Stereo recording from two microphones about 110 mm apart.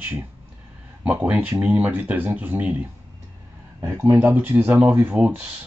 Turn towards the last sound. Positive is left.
turn(degrees=-15)  # may be behind; listen again after turning